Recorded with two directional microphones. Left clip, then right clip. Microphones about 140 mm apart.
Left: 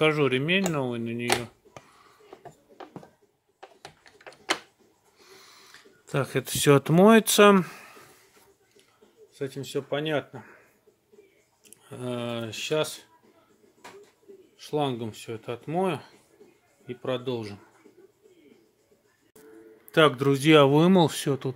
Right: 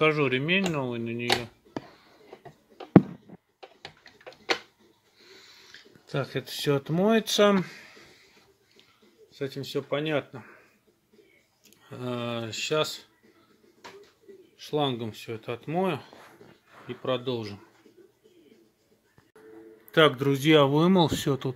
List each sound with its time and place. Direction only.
0.0 s speech: 25° left (ahead or behind)
5.3 s speech: 30° left (ahead or behind); by 8.0 s 50° left (ahead or behind)
9.3 s speech: 5° left (ahead or behind)
11.6 s speech: 10° left (ahead or behind)
14.6 s speech: 10° left (ahead or behind)
19.9 s speech: 15° left (ahead or behind)